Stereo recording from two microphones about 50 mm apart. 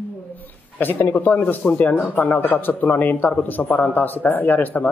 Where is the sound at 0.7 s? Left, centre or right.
Left.